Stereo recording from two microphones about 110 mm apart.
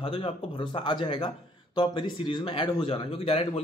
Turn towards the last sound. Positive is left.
turn(degrees=65)  # may be behind; listen again after turning